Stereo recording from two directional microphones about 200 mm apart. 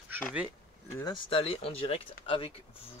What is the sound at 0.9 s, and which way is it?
Speech, 20° left (ahead or behind).